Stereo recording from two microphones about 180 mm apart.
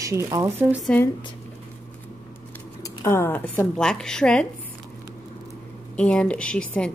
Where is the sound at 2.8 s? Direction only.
15° left (ahead or behind).